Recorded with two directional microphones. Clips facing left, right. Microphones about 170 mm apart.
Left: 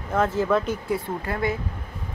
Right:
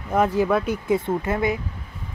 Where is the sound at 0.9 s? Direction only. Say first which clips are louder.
Right 8 dB; 20° right (ahead or behind).